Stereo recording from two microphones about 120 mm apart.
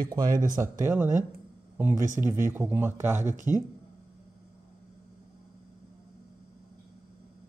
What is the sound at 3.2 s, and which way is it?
Speech, 90° right.